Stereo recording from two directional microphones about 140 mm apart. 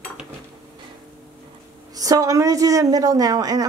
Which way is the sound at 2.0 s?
25° right (ahead or behind).